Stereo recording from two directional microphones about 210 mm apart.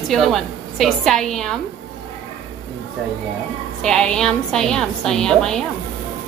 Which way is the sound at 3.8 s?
5° left (ahead or behind).